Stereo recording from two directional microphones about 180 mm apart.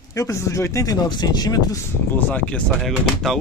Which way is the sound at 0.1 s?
15° left (ahead or behind).